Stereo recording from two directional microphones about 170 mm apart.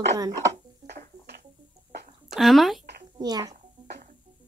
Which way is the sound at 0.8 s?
20° right (ahead or behind).